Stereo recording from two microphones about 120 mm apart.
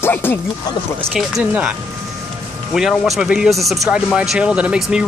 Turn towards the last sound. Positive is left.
turn(degrees=-10)  # may be behind; listen again after turning